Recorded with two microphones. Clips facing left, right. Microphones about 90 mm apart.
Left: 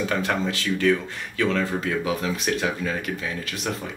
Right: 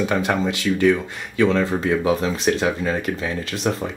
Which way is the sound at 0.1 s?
15° right (ahead or behind).